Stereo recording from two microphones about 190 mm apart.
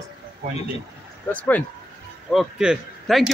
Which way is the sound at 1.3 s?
10° left (ahead or behind).